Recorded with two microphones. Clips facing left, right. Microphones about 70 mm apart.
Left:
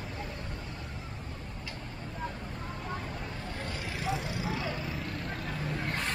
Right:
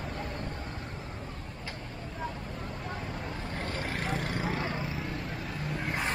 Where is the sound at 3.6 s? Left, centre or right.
Right.